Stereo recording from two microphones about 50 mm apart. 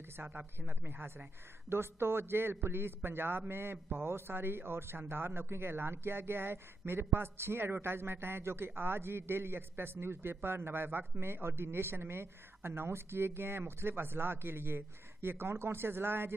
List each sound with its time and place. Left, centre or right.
0.2 s a man's voice: right